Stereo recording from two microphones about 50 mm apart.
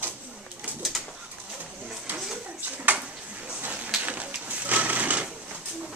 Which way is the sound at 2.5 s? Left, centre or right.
Right.